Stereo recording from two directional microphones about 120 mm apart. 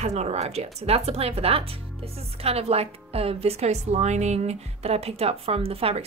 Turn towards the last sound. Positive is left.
turn(degrees=-55)  # may be behind; listen again after turning